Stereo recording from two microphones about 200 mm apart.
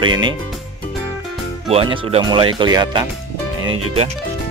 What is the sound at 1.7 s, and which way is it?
Speech, 30° right (ahead or behind).